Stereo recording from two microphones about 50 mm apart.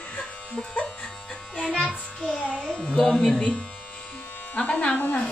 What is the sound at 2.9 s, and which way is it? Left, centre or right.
Speech, left.